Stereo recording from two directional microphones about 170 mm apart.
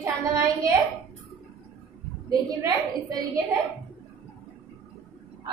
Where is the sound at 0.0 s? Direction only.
15° right (ahead or behind).